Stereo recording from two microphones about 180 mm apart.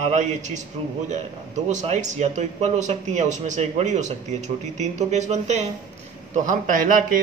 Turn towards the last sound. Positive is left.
turn(degrees=-50)  # may be behind; listen again after turning